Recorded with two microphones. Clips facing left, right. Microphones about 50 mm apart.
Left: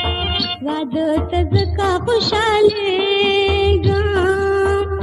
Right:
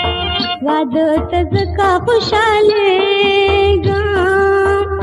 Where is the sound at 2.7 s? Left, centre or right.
Right.